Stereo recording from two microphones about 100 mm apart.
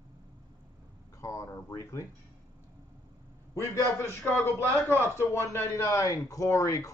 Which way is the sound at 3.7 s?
25° left (ahead or behind).